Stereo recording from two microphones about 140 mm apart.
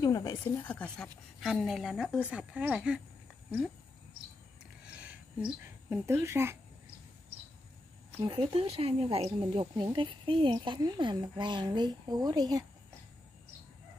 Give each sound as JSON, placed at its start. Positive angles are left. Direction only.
{"t": 0.0, "sound": "a sound", "side_deg": 30}
{"t": 0.7, "sound": "a woman's voice", "side_deg": 10}
{"t": 4.9, "sound": "speech", "side_deg": -10}
{"t": 8.2, "sound": "speech", "side_deg": -35}